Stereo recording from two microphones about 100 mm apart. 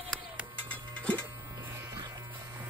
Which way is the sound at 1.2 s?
20° right (ahead or behind).